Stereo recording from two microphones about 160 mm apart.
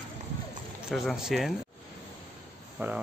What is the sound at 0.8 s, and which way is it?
Speech, centre (ahead or behind).